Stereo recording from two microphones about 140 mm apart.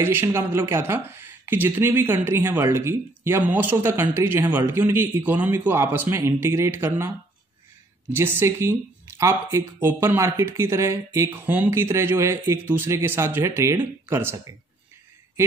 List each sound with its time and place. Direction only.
0.0 s speech: 15° right (ahead or behind)
8.1 s speech: 15° right (ahead or behind)